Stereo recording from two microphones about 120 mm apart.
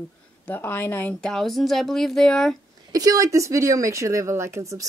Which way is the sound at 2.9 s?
30° right (ahead or behind).